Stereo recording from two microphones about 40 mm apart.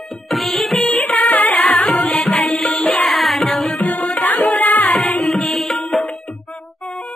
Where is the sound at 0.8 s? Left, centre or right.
Left.